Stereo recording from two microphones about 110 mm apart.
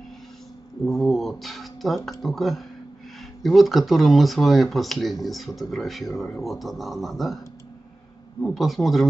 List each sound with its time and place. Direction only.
0.8 s speech: centre (ahead or behind)
8.4 s speech: centre (ahead or behind)